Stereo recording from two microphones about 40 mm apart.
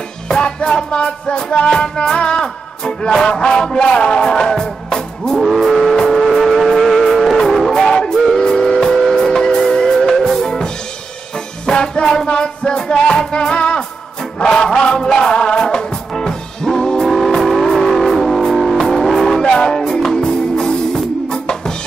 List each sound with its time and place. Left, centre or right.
0.3 s music: centre
5.6 s vehicle: centre
8.4 s steam whistle: centre
9.1 s music: centre
17.1 s vehicle: centre
18.8 s music: centre